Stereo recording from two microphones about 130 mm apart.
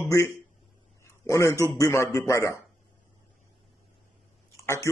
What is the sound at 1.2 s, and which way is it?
A man's voice, 20° left (ahead or behind).